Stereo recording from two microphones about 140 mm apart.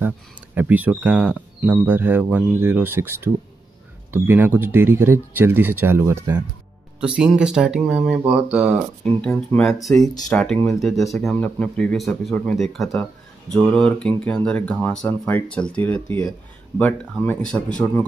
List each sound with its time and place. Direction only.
0.6 s speech: 10° right (ahead or behind)
9.0 s speech: 5° left (ahead or behind)
11.3 s speech: 10° left (ahead or behind)